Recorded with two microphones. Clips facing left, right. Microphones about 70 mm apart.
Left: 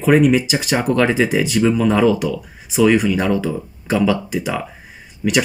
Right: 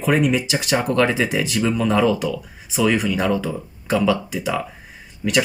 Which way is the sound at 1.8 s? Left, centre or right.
Left.